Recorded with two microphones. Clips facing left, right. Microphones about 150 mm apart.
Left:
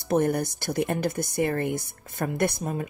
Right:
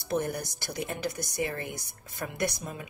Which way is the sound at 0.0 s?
55° left (ahead or behind).